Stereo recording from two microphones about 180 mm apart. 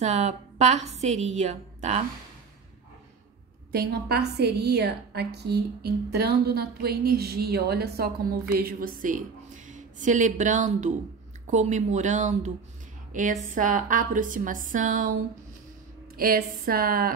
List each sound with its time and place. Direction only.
0.0 s a woman's voice: 40° right (ahead or behind)
3.7 s a woman's voice: 60° right (ahead or behind)
16.2 s a woman's voice: 55° right (ahead or behind)